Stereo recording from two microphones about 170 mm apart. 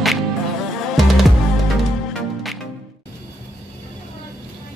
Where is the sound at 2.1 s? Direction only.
Centre (ahead or behind).